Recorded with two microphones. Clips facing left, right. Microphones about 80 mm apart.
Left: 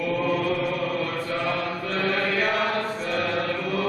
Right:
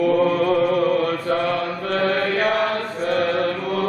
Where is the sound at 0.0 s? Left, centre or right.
Right.